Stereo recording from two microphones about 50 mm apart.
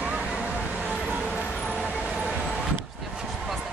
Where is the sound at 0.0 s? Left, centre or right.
Right.